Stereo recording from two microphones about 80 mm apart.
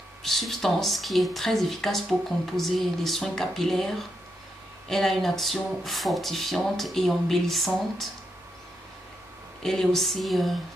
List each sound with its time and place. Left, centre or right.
0.2 s speech: centre
9.6 s speech: centre